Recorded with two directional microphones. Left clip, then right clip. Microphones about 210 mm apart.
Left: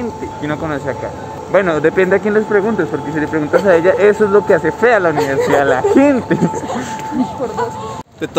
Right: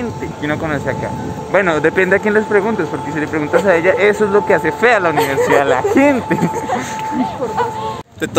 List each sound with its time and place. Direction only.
0.5 s speech: 5° left (ahead or behind)
2.6 s speech: 25° left (ahead or behind)